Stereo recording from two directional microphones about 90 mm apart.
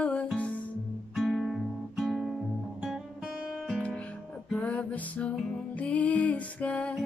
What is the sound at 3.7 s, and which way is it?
Music, 15° left (ahead or behind).